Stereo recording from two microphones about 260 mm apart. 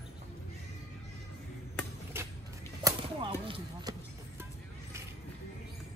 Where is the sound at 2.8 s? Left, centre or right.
Centre.